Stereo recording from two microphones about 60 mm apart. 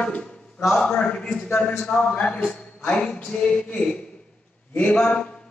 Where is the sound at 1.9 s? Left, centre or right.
Centre.